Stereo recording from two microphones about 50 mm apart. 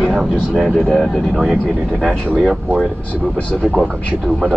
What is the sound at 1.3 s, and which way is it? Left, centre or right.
Speech, centre.